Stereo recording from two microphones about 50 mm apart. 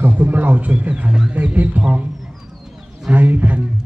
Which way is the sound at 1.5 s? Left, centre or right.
Right.